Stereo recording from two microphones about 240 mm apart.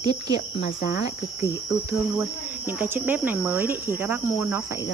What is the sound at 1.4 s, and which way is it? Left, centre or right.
Speech, centre.